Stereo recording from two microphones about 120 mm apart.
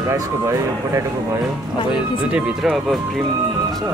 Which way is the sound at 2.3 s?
10° right (ahead or behind).